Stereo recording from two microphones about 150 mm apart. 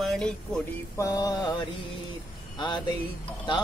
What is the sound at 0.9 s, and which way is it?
Music, 20° left (ahead or behind).